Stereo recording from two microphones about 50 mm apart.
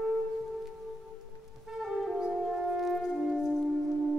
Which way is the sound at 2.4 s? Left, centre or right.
Centre.